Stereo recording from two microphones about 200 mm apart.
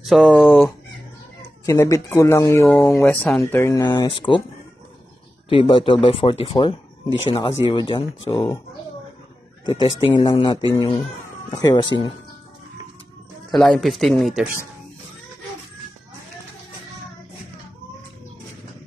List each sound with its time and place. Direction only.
0.0 s speech: centre (ahead or behind)
1.7 s speech: 15° left (ahead or behind)
3.5 s speech: 15° left (ahead or behind)
5.5 s speech: 25° left (ahead or behind)
9.7 s speech: 25° left (ahead or behind)
13.5 s speech: 5° left (ahead or behind)